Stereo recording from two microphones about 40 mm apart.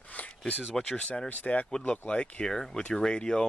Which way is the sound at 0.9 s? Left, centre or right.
Left.